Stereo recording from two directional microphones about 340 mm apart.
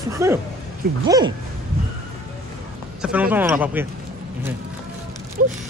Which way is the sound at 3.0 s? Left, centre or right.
Centre.